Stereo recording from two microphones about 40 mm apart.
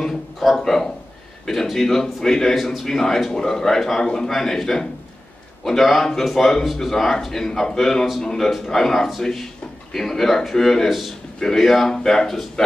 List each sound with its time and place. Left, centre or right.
0.4 s a man's voice: centre
10.9 s a man's voice: centre
11.3 s speech: centre
12.6 s a sound: centre